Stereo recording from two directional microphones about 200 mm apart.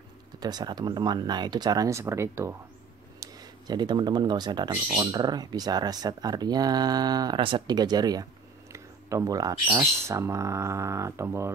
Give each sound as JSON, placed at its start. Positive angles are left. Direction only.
{"t": 0.4, "sound": "speech", "side_deg": -20}